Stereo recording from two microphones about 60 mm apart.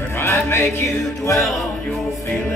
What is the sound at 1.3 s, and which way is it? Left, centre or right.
Music, centre.